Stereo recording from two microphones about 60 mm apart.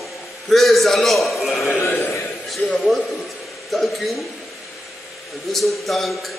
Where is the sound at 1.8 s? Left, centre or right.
Left.